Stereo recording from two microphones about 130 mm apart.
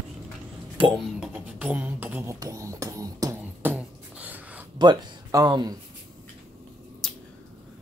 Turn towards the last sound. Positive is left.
turn(degrees=5)  # may be behind; listen again after turning